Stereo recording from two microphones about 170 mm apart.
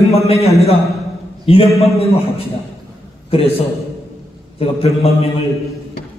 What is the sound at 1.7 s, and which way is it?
Speech, centre (ahead or behind).